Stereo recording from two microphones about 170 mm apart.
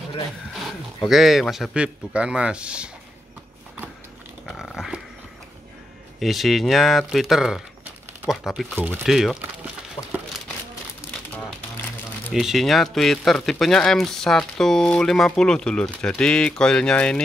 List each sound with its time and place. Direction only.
0.5 s speech: centre (ahead or behind)
4.5 s dog: centre (ahead or behind)
6.1 s speech: centre (ahead or behind)
10.0 s a sound: 25° left (ahead or behind)
12.4 s speech: centre (ahead or behind)